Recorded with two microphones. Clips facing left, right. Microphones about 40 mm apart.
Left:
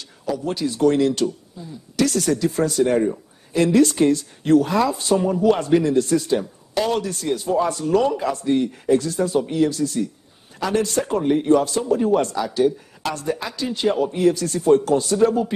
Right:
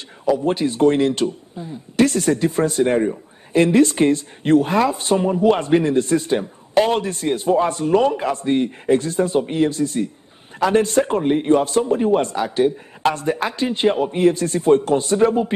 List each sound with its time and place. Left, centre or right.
0.2 s speech: right